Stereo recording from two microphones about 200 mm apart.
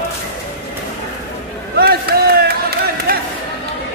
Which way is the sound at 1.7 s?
50° right (ahead or behind).